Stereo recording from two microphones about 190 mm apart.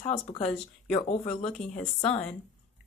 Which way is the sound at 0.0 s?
35° left (ahead or behind).